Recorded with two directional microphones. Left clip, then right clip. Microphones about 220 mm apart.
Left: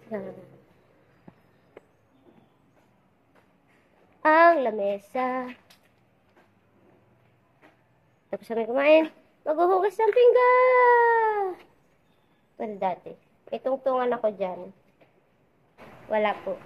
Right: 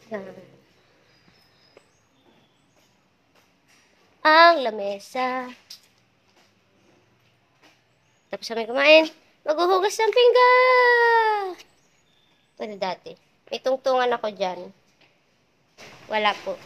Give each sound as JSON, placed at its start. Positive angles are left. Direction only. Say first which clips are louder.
{"t": 0.1, "sound": "a woman's voice", "louder": "right 1 dB", "side_deg": -15}
{"t": 4.2, "sound": "child singing", "louder": "right 3 dB", "side_deg": -10}
{"t": 8.3, "sound": "a woman's voice", "louder": "even", "side_deg": -5}
{"t": 12.5, "sound": "a woman's voice", "louder": "even", "side_deg": -20}
{"t": 16.1, "sound": "speech", "louder": "right 2 dB", "side_deg": -10}